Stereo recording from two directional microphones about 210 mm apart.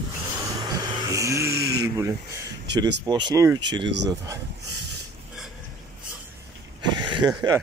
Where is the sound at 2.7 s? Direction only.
55° right (ahead or behind).